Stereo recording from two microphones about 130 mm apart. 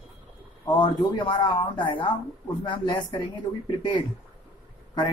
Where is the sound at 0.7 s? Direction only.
35° left (ahead or behind).